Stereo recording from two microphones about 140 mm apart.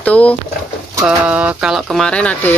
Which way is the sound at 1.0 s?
10° right (ahead or behind).